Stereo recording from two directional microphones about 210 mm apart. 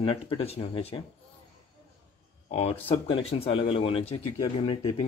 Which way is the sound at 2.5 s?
30° left (ahead or behind).